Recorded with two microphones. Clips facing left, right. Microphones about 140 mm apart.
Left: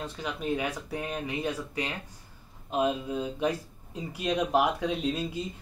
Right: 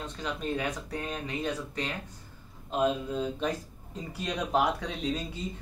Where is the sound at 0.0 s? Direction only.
10° left (ahead or behind).